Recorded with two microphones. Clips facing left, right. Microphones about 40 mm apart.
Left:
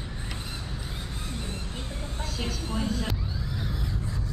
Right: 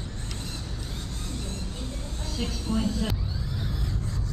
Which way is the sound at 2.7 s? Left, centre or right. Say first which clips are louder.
Right 5 dB; centre.